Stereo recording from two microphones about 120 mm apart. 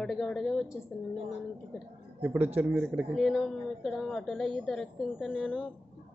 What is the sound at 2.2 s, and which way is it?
Speech, 15° right (ahead or behind).